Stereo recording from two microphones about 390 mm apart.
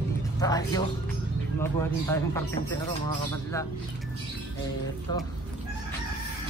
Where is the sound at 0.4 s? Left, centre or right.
Centre.